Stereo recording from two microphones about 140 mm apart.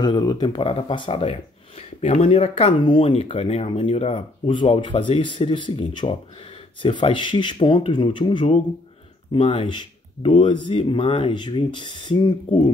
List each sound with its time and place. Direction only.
0.0 s speech: 30° left (ahead or behind)